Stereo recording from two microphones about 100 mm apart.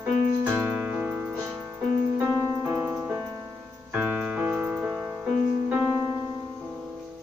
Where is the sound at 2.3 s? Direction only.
15° right (ahead or behind).